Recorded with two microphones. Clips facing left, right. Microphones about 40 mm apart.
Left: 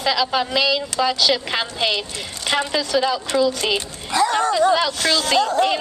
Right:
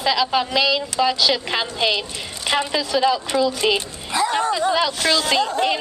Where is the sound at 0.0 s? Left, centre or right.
Centre.